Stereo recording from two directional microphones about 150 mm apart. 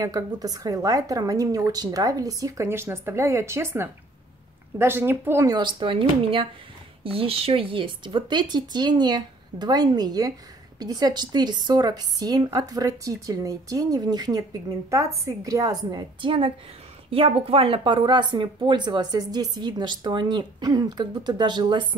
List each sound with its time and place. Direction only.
0.0 s speech: 25° right (ahead or behind)
5.6 s speech: 30° right (ahead or behind)